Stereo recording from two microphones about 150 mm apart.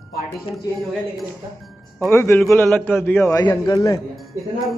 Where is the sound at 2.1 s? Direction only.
15° left (ahead or behind).